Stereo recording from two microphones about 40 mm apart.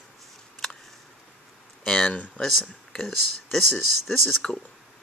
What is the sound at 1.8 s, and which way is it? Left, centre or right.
Speech, centre.